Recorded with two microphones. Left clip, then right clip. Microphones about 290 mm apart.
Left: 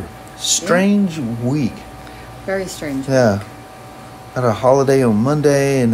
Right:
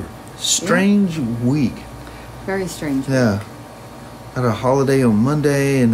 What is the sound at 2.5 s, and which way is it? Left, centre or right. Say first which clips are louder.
Speech: left 1 dB; centre.